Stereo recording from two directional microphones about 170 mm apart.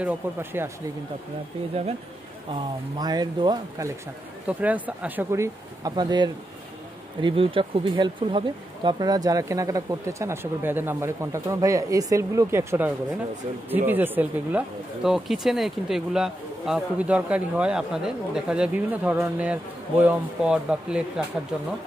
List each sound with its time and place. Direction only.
0.0 s speech: 15° right (ahead or behind)
3.0 s speech: 25° right (ahead or behind)
4.5 s speech: 10° right (ahead or behind)